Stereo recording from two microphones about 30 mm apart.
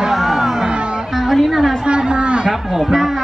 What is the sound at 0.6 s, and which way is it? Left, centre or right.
Music, right.